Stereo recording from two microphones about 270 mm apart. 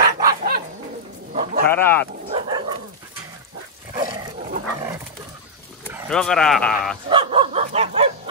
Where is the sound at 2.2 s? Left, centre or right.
Right.